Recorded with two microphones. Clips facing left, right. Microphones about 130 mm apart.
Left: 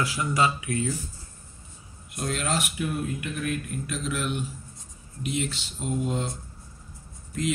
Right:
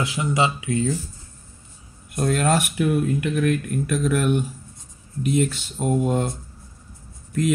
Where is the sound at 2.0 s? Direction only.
50° right (ahead or behind).